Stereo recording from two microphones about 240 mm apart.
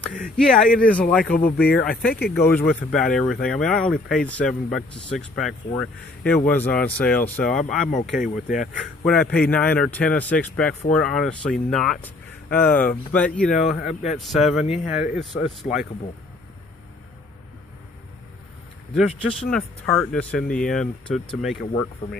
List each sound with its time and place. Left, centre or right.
0.4 s speech: centre
1.3 s speech: left
1.8 s speech: centre
7.9 s speech: left
8.5 s speech: centre
15.7 s speech: left
18.9 s speech: centre